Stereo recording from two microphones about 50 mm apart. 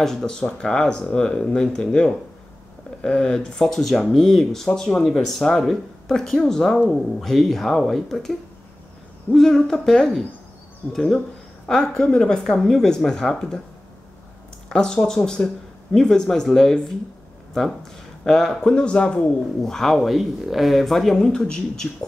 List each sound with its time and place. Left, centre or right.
0.0 s speech: centre
14.7 s speech: centre
18.2 s speech: centre
19.6 s speech: centre